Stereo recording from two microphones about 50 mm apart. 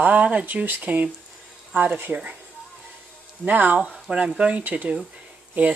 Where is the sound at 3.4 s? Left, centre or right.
Right.